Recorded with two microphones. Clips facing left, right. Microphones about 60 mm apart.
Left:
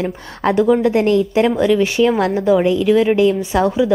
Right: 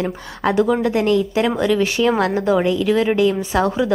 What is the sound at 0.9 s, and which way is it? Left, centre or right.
Speech, left.